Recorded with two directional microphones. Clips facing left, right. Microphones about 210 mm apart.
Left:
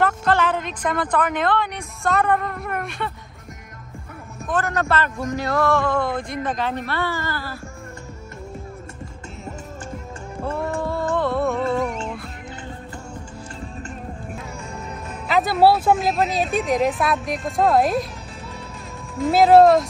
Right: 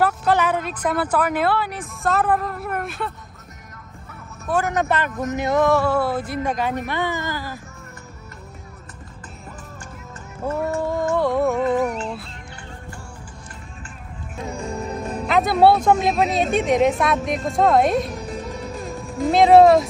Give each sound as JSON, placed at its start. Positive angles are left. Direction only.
{"t": 0.0, "sound": "a woman's voice", "side_deg": -10}
{"t": 4.5, "sound": "speech", "side_deg": -15}
{"t": 10.8, "sound": "music", "side_deg": -15}
{"t": 14.5, "sound": "music", "side_deg": -35}
{"t": 15.2, "sound": "speech", "side_deg": 0}
{"t": 18.7, "sound": "music", "side_deg": -35}
{"t": 19.3, "sound": "speech", "side_deg": 0}